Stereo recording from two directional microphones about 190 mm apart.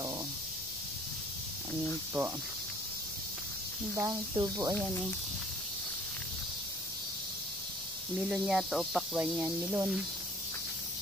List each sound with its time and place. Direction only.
3.9 s speech: 20° right (ahead or behind)
8.2 s speech: centre (ahead or behind)